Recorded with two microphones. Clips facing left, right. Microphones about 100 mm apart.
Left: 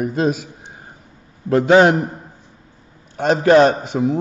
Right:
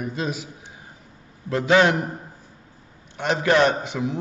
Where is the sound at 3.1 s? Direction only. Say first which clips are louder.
Left 7 dB; 40° left (ahead or behind).